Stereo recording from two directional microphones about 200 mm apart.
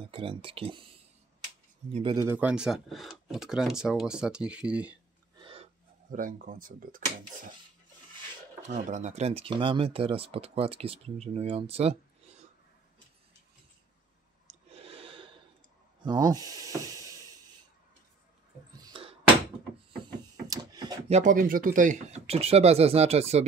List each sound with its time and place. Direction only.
0.0 s speech: 25° right (ahead or behind)
1.9 s speech: 30° right (ahead or behind)
2.1 s speech: 10° right (ahead or behind)
5.3 s gasp: 25° right (ahead or behind)
6.0 s speech: 40° right (ahead or behind)
8.6 s speech: 40° right (ahead or behind)
14.7 s a sound: 30° right (ahead or behind)
16.0 s snort: 20° right (ahead or behind)
18.8 s a sound: 20° right (ahead or behind)
21.1 s speech: 40° right (ahead or behind)